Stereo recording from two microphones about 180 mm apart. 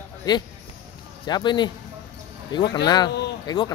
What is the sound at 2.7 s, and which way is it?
Speech, 25° left (ahead or behind).